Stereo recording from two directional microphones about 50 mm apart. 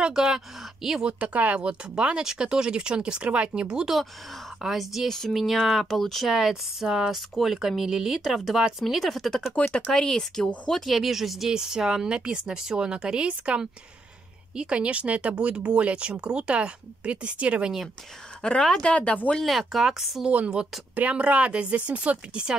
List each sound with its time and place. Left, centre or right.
0.0 s speech: centre
1.0 s speech: right
4.6 s speech: centre
5.0 s speech: centre
5.3 s speech: centre
6.3 s speech: centre
9.6 s speech: left
9.9 s speech: centre
10.9 s speech: centre; by 17.7 s right
18.4 s a woman's voice: left
19.4 s speech: centre
20.9 s speech: right